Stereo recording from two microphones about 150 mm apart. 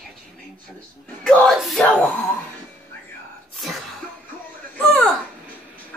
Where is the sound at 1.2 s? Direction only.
Centre (ahead or behind).